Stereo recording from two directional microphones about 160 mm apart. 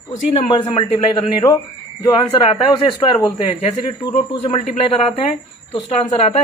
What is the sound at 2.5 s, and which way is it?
Speech, 25° left (ahead or behind).